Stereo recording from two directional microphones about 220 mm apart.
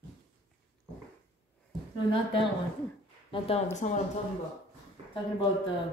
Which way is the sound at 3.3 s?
25° left (ahead or behind).